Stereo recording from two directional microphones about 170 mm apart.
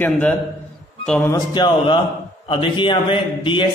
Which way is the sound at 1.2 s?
20° left (ahead or behind).